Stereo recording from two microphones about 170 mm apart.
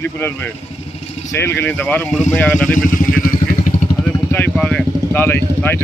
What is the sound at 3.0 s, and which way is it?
Vehicle, 50° left (ahead or behind).